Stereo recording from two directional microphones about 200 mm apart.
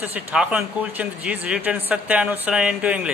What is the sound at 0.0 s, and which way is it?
Speech, 5° right (ahead or behind).